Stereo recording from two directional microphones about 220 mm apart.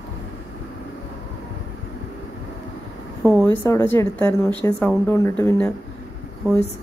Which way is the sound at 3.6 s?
10° left (ahead or behind).